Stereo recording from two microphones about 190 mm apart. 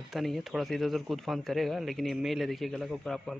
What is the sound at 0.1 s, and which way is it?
A man's voice, centre (ahead or behind).